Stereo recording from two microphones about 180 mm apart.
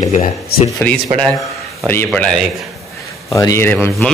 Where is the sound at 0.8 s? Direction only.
10° left (ahead or behind).